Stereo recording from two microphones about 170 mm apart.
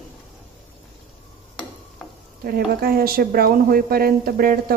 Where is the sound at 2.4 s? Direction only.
60° right (ahead or behind).